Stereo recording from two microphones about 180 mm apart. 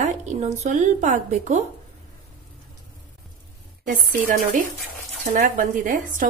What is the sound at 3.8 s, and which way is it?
Speech, 50° right (ahead or behind).